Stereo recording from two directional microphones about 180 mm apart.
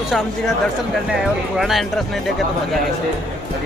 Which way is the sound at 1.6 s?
Centre (ahead or behind).